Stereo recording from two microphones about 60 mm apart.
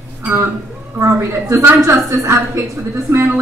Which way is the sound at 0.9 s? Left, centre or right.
Right.